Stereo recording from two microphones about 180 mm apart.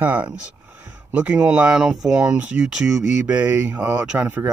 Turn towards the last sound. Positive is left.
turn(degrees=-10)  # may be behind; listen again after turning